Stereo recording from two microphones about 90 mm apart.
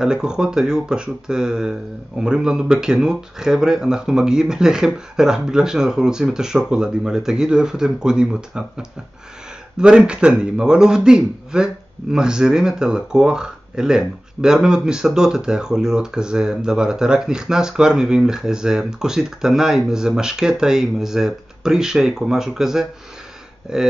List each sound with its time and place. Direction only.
0.0 s a man's voice: 10° right (ahead or behind)